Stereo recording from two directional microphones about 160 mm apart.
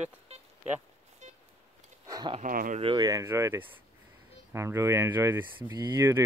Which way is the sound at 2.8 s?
25° right (ahead or behind).